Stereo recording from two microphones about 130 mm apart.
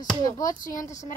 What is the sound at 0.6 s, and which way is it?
Speech, 90° left.